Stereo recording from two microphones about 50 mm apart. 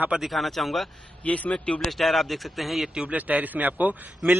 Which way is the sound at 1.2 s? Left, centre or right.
Left.